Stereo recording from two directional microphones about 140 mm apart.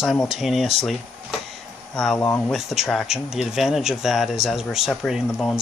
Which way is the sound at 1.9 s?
5° left (ahead or behind).